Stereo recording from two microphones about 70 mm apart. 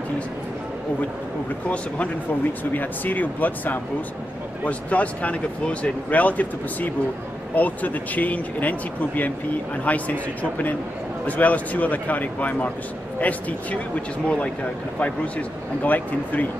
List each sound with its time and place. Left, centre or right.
2.7 s speech: left
11.2 s speech: left